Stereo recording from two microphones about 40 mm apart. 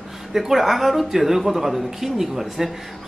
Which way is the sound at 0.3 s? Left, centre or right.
Centre.